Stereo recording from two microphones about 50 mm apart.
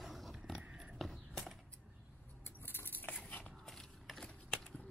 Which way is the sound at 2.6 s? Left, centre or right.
Left.